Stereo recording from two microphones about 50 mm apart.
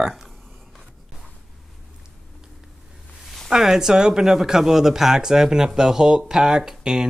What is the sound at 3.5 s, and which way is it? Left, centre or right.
Speech, centre.